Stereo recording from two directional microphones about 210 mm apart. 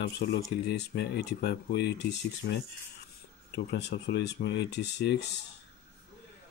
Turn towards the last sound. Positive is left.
turn(degrees=55)  # may be behind; listen again after turning